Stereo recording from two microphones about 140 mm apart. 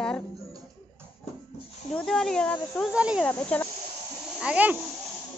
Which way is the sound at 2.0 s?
5° left (ahead or behind).